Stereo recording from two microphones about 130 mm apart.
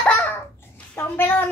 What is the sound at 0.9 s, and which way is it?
Speech, 20° left (ahead or behind).